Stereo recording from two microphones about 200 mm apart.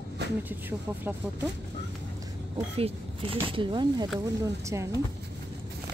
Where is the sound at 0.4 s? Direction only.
10° right (ahead or behind).